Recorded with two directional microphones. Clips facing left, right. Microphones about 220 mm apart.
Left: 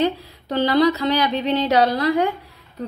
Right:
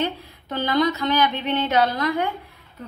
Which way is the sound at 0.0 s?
35° left (ahead or behind).